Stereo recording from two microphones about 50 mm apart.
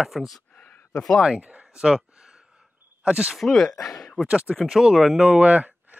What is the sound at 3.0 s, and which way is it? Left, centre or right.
Speech, right.